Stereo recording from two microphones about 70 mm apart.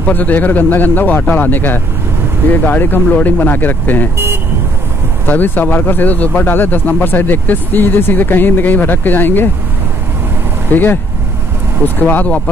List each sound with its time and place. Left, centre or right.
0.0 s speech: left
5.2 s speech: left
10.7 s speech: left